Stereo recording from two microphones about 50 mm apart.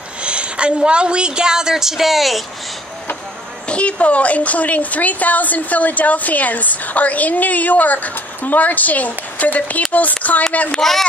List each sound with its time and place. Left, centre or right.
0.2 s a woman's voice: right; by 2.4 s centre
3.6 s a woman's voice: left
10.7 s a child's voice: centre